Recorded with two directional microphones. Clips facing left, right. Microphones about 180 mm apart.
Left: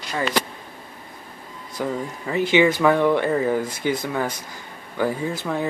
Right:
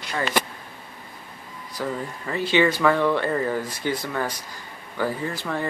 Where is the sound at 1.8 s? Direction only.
15° left (ahead or behind).